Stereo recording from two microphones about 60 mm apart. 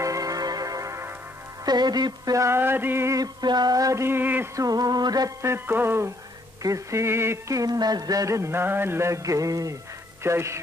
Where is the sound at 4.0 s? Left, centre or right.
Right.